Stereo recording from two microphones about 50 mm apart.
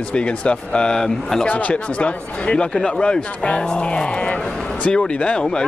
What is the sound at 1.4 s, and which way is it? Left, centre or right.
Speech, left.